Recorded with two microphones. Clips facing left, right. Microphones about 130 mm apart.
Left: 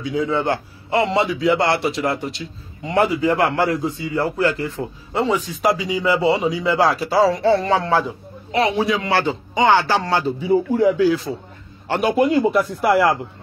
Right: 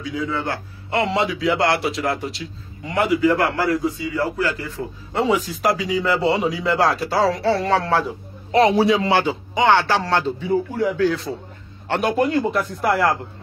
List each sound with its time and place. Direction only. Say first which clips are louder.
0.0 s a man's voice: left 4 dB; 25° left (ahead or behind)
0.8 s speech: left 2 dB; centre (ahead or behind)
2.8 s a man's voice: even; 25° left (ahead or behind)
5.1 s speech: right 1 dB; centre (ahead or behind)
8.5 s a man's voice: right 3 dB; 35° right (ahead or behind)
9.1 s speech: even; 10° right (ahead or behind); by 11.1 s 15° left (ahead or behind)
12.3 s speech: left 4 dB; 10° left (ahead or behind)